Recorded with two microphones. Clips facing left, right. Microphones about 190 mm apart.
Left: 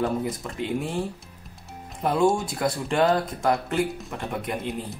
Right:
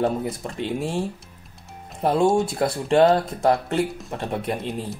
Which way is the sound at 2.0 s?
25° right (ahead or behind).